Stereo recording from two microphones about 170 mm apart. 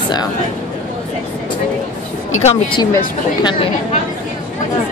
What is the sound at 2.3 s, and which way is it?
Speech, 35° left (ahead or behind).